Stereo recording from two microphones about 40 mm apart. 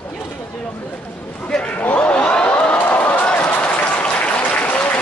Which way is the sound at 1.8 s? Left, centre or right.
Left.